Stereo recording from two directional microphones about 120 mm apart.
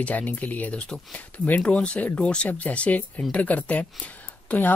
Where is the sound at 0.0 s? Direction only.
15° left (ahead or behind).